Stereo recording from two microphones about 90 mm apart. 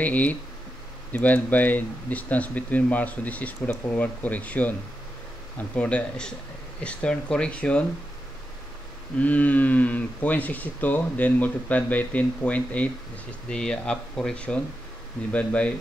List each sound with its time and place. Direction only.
0.0 s speech: 20° left (ahead or behind)
9.2 s speech: 15° left (ahead or behind)